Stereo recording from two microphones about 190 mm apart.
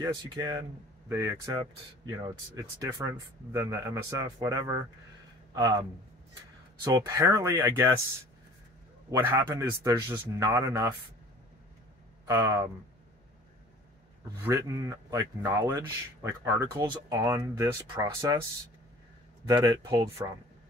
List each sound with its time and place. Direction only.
0.0 s speech: 20° right (ahead or behind)
9.3 s speech: 20° right (ahead or behind)
12.3 s speech: 15° right (ahead or behind)
14.4 s speech: 15° right (ahead or behind)
19.4 s speech: 20° right (ahead or behind)